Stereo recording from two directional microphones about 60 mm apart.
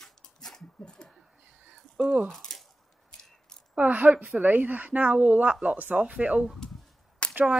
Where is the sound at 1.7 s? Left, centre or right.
Right.